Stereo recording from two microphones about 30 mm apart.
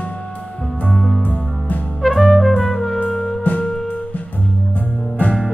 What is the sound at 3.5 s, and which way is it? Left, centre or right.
Music, left.